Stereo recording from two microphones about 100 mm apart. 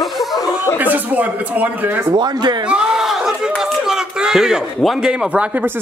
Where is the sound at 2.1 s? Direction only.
45° right (ahead or behind).